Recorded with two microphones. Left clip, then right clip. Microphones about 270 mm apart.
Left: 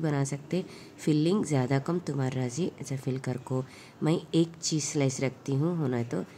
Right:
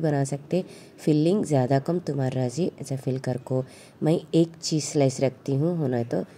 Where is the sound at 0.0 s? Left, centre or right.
Centre.